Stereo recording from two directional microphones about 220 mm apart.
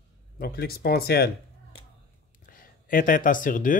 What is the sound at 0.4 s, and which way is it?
Speech, 45° left (ahead or behind).